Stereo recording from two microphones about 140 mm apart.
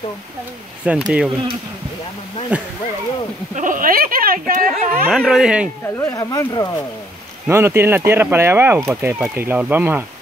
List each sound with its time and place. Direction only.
0.8 s speech: 10° right (ahead or behind)
2.5 s speech: 10° right (ahead or behind)
3.5 s speech: 75° right (ahead or behind); by 4.6 s 90° right
5.1 s speech: 5° right (ahead or behind)
5.9 s speech: 20° left (ahead or behind)
7.4 s speech: 20° right (ahead or behind)